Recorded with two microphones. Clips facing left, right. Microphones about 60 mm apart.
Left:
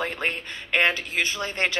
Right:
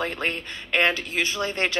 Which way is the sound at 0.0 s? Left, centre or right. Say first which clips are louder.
Even; centre.